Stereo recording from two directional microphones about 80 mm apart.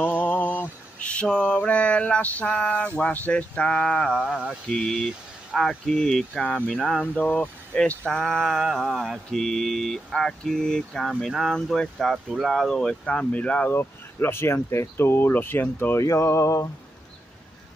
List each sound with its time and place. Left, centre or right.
0.0 s mantra: left
3.0 s speech: centre
4.2 s speech: centre
13.7 s speech: left
16.0 s a sound: left